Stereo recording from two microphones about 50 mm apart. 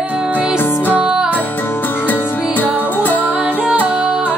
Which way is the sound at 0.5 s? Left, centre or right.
Left.